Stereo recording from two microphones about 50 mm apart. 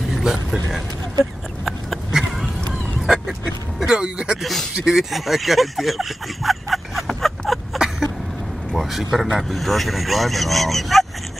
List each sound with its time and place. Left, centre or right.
0.1 s vehicle: centre
1.6 s a sound: centre
2.7 s vehicle: centre
3.8 s a sound: centre
4.4 s speech: centre
4.7 s speech: centre
5.1 s speech: centre
7.1 s a sound: centre
8.7 s speech: centre